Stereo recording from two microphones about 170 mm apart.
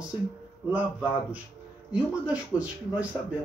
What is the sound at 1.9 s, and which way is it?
Speech, 5° right (ahead or behind).